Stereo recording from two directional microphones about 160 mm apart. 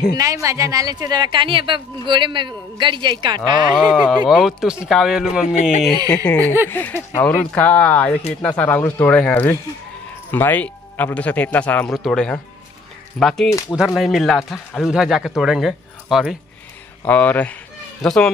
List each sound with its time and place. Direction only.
0.1 s speech: 20° right (ahead or behind)
3.7 s speech: centre (ahead or behind)
6.0 s speech: 10° left (ahead or behind)
6.4 s speech: 15° right (ahead or behind)
6.7 s speech: 10° left (ahead or behind)
17.0 s speech: 10° left (ahead or behind)